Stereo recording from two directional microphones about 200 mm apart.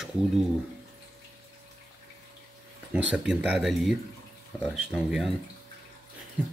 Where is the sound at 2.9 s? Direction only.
5° right (ahead or behind).